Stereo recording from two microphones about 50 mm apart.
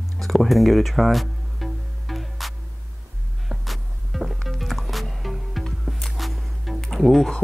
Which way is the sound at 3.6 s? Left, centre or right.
Centre.